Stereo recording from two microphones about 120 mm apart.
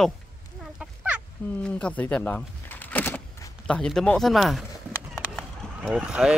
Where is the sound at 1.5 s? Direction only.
10° left (ahead or behind).